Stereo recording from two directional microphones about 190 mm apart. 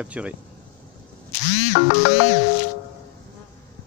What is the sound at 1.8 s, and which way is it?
Music, 40° left (ahead or behind).